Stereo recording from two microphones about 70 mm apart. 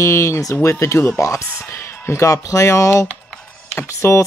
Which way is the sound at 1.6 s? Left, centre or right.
Left.